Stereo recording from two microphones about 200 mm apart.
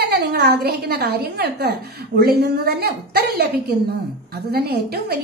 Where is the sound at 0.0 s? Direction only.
55° right (ahead or behind).